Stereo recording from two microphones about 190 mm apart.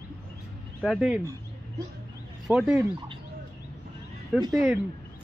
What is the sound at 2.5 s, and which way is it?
Speech, 5° right (ahead or behind).